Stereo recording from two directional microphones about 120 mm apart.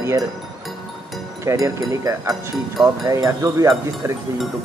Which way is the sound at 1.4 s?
25° right (ahead or behind).